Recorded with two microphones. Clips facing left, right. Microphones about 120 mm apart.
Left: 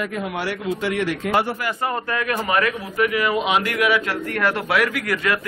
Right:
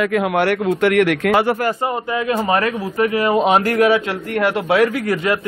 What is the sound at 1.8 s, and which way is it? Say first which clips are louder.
A man's voice: right 3 dB; 20° right (ahead or behind).